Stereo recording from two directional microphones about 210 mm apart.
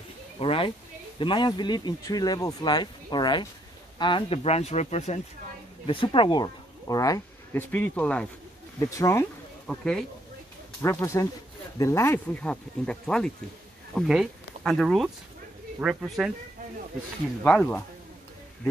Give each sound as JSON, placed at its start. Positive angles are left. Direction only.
{"t": 0.4, "sound": "speech", "side_deg": 25}
{"t": 9.7, "sound": "speech", "side_deg": 5}
{"t": 10.8, "sound": "speech", "side_deg": 15}
{"t": 17.4, "sound": "speech", "side_deg": 5}